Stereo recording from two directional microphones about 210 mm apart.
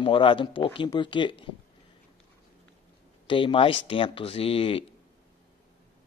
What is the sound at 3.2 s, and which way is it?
Speech, 25° left (ahead or behind).